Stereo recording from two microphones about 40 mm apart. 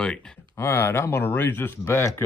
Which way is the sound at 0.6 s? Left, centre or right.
Left.